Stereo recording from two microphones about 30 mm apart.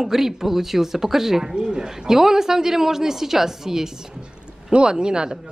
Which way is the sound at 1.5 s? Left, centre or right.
Right.